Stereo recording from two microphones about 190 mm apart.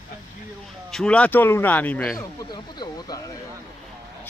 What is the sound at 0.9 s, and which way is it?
Speech, 5° left (ahead or behind).